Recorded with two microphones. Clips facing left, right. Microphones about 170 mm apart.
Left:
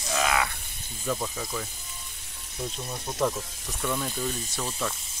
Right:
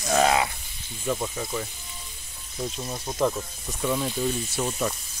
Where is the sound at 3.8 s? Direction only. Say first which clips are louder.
Right 4 dB; 10° right (ahead or behind).